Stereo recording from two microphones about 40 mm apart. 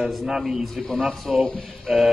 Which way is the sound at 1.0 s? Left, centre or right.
Right.